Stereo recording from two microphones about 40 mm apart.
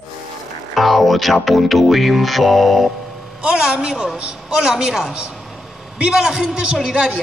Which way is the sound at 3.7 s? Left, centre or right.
Right.